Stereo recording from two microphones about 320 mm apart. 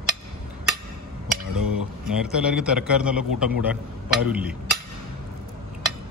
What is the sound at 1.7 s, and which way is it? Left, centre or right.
A man's voice, centre.